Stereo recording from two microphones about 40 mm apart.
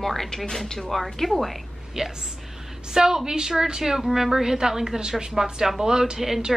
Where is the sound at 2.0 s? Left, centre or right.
Centre.